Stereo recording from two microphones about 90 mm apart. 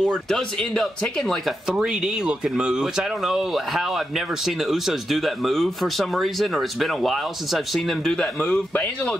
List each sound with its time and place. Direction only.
0.0 s speech: 5° left (ahead or behind)
1.8 s speech: 5° right (ahead or behind)
8.4 s speech: 20° left (ahead or behind)